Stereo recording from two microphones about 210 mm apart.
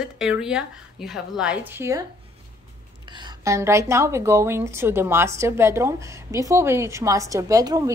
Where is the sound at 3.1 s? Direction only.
15° right (ahead or behind).